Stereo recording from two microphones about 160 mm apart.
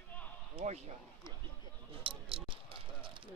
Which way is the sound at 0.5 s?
45° right (ahead or behind).